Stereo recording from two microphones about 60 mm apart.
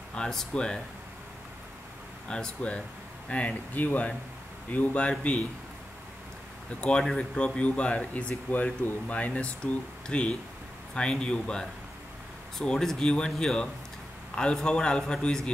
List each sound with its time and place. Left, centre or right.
0.1 s a man's voice: centre
2.2 s a man's voice: centre
6.7 s a man's voice: centre